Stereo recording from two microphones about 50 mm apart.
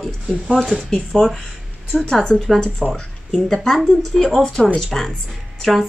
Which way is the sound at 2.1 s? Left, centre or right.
Centre.